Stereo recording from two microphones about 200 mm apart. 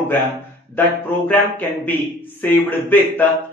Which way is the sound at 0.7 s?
10° left (ahead or behind).